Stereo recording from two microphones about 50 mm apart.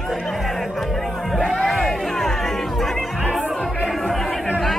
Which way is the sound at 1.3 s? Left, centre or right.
Centre.